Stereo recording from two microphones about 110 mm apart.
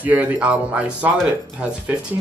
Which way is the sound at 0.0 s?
15° right (ahead or behind).